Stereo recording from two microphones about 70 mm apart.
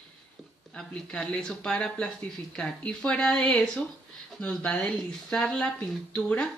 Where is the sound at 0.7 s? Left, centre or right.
Centre.